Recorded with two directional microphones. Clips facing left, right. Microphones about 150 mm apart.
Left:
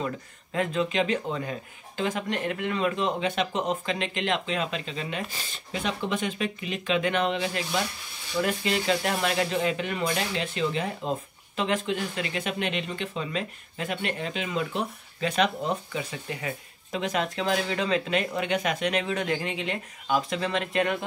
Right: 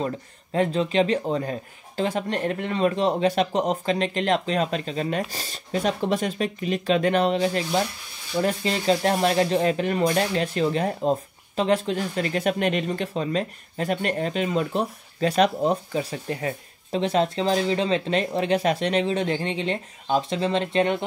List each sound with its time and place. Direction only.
0.0 s speech: 35° right (ahead or behind)